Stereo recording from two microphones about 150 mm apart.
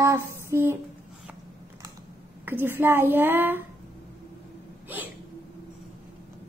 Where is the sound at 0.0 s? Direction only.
20° right (ahead or behind).